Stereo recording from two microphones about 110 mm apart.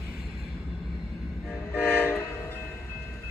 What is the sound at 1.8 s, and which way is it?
Train, 15° left (ahead or behind).